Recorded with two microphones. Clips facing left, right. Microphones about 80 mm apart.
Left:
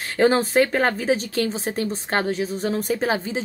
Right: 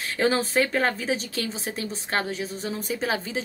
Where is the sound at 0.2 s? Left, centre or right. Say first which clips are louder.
Left 5 dB; left.